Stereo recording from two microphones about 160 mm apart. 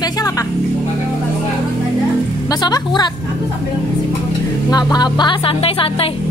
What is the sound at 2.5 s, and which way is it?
Speech, 25° left (ahead or behind).